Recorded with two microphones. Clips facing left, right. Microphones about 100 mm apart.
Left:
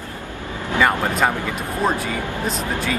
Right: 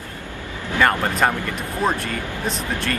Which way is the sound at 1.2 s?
15° left (ahead or behind).